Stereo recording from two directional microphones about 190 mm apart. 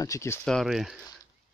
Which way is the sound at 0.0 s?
15° left (ahead or behind).